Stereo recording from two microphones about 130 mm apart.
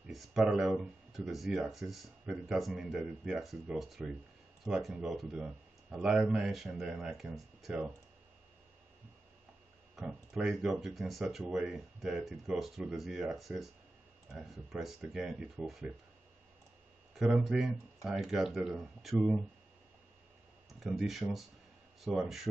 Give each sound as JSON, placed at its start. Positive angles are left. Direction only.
{"t": 0.0, "sound": "speech", "side_deg": 0}
{"t": 9.9, "sound": "speech", "side_deg": -5}
{"t": 17.1, "sound": "speech", "side_deg": 0}
{"t": 20.8, "sound": "speech", "side_deg": 0}